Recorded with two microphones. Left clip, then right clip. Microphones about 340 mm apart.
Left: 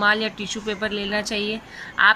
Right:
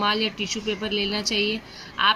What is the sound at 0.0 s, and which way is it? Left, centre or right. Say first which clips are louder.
Speech: left 3 dB; centre.